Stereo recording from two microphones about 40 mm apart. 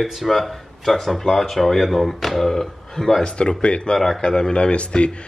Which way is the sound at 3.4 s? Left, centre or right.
Left.